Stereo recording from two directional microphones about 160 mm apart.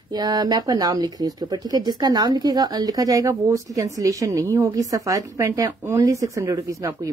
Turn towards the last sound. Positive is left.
turn(degrees=-20)  # may be behind; listen again after turning